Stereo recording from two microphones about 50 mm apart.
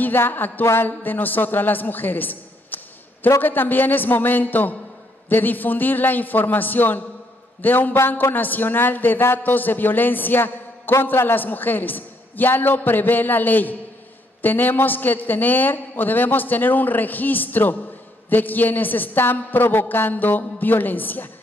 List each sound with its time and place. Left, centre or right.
0.0 s a man's voice: left